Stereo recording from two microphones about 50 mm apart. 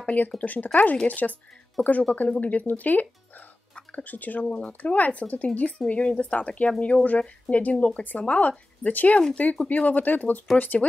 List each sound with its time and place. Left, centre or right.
0.0 s speech: left